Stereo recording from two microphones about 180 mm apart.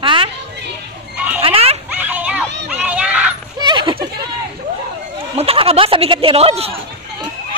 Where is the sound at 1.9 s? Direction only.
10° right (ahead or behind).